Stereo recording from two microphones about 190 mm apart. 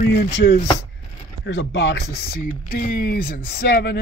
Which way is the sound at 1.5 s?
65° left (ahead or behind).